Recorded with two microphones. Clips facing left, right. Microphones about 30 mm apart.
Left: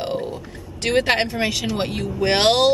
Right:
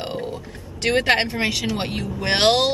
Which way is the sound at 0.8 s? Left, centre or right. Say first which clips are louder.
Even; centre.